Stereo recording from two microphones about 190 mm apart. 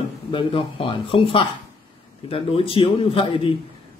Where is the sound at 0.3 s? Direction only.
25° left (ahead or behind).